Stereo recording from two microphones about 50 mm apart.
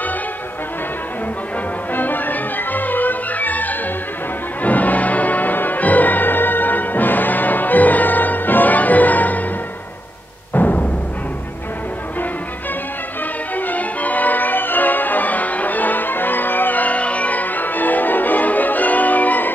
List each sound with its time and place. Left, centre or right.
2.0 s music: left
10.5 s music: left
13.6 s music: left